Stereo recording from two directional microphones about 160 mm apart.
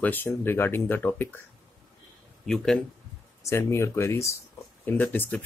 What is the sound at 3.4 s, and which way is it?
Speech, 15° left (ahead or behind).